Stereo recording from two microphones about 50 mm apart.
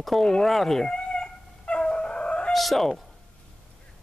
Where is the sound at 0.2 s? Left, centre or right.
Centre.